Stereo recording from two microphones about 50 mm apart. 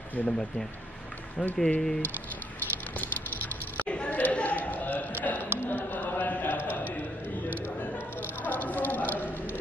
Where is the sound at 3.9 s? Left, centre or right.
Left.